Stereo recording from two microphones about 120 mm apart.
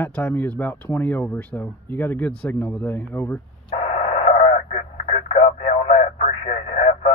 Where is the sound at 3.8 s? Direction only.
60° left (ahead or behind).